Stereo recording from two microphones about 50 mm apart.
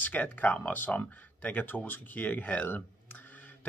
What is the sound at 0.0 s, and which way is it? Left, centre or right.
Speech, left.